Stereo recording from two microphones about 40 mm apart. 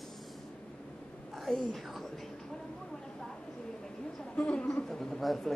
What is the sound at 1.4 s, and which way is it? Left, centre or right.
Speech, centre.